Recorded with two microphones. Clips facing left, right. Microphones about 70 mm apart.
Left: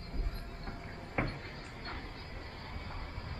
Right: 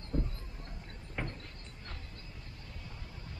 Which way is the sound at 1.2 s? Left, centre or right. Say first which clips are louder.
Left 4 dB; left.